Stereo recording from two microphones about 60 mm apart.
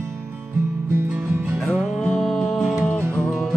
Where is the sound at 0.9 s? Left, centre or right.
Right.